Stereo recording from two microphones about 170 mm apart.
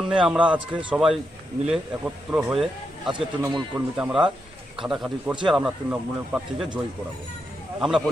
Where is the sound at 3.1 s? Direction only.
25° right (ahead or behind).